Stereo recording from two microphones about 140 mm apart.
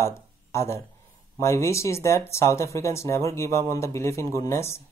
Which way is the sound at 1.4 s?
20° left (ahead or behind).